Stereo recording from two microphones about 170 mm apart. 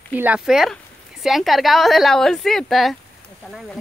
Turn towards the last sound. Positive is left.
turn(degrees=0)  # may be behind; listen again after turning